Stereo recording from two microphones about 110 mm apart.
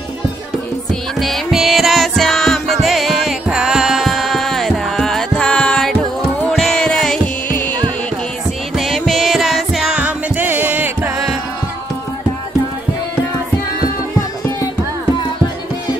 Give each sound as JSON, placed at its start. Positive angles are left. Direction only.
{"t": 1.2, "sound": "music", "side_deg": 0}
{"t": 8.7, "sound": "music", "side_deg": 0}